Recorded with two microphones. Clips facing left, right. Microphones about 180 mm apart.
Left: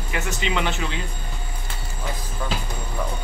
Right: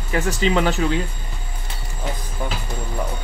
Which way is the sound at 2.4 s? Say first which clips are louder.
Right 1 dB; 20° right (ahead or behind).